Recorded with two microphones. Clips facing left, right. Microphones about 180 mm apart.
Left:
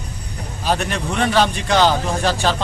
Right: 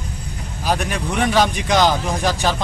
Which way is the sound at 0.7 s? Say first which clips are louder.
Left 1 dB; 10° right (ahead or behind).